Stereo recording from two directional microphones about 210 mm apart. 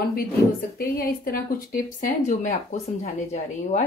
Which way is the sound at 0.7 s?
45° left (ahead or behind).